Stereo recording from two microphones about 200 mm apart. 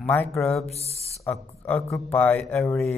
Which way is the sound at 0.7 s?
30° left (ahead or behind).